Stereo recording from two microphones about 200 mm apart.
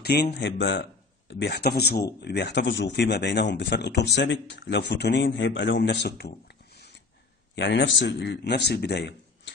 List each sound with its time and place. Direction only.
0.0 s speech: 55° left (ahead or behind)